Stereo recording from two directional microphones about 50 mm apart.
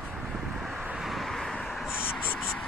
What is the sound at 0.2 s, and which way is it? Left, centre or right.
Vehicle, centre.